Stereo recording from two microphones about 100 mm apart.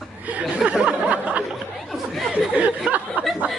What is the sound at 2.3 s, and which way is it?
Speech, 15° right (ahead or behind).